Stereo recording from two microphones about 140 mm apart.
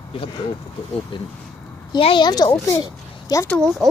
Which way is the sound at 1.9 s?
35° left (ahead or behind).